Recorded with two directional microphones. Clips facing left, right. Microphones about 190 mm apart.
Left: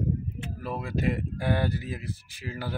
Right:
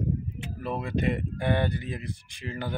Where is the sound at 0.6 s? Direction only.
Centre (ahead or behind).